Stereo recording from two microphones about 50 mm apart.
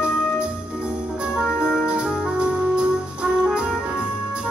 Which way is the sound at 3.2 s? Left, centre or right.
Centre.